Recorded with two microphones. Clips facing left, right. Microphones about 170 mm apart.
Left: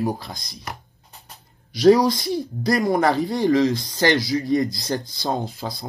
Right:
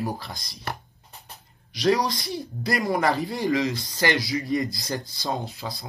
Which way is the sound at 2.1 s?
Centre (ahead or behind).